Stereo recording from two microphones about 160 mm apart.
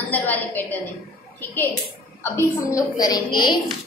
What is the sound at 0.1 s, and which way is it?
A woman's voice, 10° left (ahead or behind).